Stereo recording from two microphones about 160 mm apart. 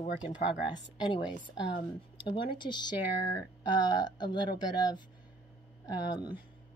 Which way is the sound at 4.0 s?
30° left (ahead or behind).